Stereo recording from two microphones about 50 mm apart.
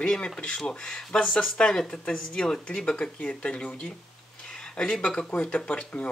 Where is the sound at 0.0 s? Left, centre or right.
Centre.